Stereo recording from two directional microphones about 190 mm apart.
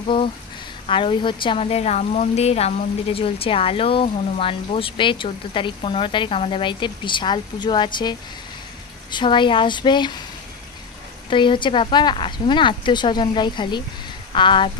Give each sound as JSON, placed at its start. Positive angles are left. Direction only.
{"t": 0.8, "sound": "speech", "side_deg": 25}
{"t": 11.2, "sound": "speech", "side_deg": 25}